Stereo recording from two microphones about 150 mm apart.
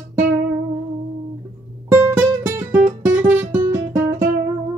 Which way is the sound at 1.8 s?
15° right (ahead or behind).